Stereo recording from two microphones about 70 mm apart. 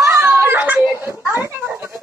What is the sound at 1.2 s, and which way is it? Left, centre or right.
Speech, right.